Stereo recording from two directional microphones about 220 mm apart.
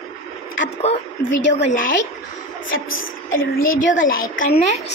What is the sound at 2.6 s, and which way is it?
Speech, 65° left (ahead or behind).